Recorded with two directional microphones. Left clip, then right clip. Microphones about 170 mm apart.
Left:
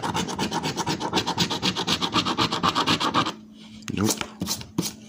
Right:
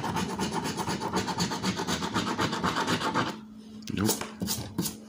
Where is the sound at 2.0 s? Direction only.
60° left (ahead or behind).